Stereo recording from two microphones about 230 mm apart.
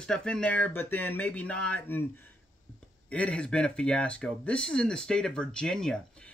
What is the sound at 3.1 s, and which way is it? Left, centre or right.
Speech, centre.